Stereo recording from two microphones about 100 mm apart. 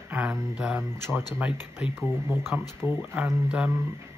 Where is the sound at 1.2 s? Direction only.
15° right (ahead or behind).